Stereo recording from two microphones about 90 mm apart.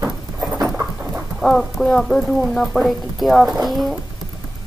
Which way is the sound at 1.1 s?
5° right (ahead or behind).